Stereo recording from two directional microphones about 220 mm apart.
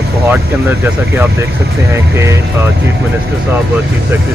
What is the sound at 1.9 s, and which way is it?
Speech, 10° right (ahead or behind).